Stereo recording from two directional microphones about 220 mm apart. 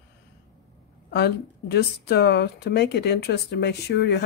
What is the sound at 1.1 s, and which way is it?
Speech, 50° left (ahead or behind).